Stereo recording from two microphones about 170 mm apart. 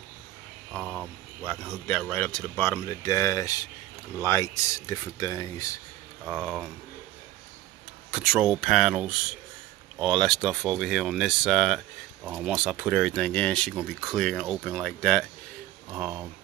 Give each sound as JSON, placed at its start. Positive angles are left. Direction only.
{"t": 0.7, "sound": "speech", "side_deg": -5}
{"t": 6.2, "sound": "speech", "side_deg": 0}
{"t": 8.1, "sound": "speech", "side_deg": -5}
{"t": 15.9, "sound": "speech", "side_deg": -5}